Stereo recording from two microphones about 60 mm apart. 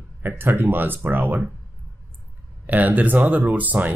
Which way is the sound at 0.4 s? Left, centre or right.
Right.